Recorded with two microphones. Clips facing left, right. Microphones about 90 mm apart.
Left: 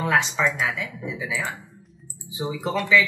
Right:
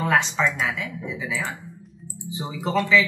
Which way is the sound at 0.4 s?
20° left (ahead or behind).